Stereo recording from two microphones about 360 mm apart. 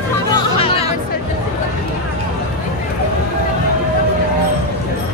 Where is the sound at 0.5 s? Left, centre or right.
Centre.